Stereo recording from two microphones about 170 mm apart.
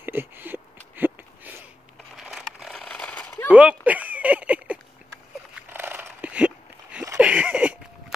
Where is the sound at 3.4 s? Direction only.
5° right (ahead or behind).